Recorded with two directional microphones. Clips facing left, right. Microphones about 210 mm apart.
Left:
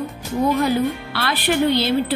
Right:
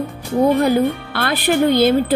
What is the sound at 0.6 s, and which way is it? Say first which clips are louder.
Speech: right 4 dB; 45° right (ahead or behind).